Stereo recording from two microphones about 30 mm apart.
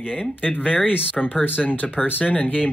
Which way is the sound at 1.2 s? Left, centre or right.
Left.